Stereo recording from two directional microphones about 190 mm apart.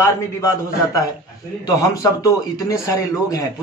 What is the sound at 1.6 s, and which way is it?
A man's voice, 20° left (ahead or behind).